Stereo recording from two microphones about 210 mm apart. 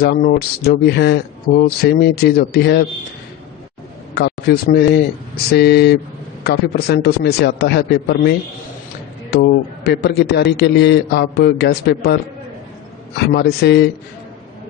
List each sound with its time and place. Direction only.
0.0 s a man's voice: 45° left (ahead or behind)
4.1 s a man's voice: 50° left (ahead or behind)
13.3 s a man's voice: 50° left (ahead or behind)